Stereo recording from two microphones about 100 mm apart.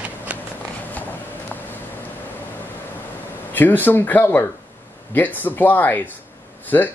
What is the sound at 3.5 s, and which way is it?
Speech, 20° left (ahead or behind).